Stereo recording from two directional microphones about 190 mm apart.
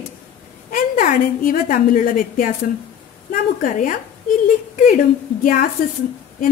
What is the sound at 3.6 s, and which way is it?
Speech, 45° left (ahead or behind).